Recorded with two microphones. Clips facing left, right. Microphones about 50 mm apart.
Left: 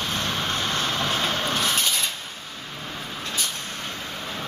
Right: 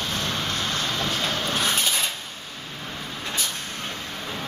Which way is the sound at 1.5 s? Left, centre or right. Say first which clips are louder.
Even; centre.